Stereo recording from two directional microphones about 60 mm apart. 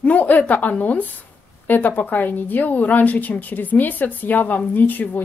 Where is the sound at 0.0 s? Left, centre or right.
Left.